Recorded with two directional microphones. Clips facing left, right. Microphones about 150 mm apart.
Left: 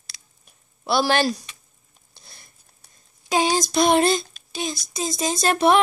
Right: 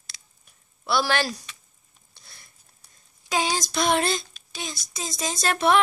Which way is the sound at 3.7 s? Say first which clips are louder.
Left 5 dB; 15° left (ahead or behind).